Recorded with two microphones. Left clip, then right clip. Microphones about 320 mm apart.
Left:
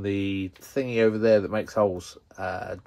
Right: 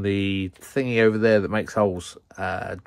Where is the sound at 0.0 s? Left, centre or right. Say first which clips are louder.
Right 3 dB; right.